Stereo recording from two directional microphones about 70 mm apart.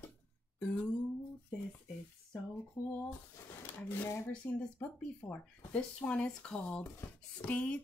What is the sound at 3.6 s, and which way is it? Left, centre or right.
Speech, left.